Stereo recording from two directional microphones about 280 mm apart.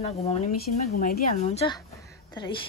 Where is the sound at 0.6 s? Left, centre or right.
Left.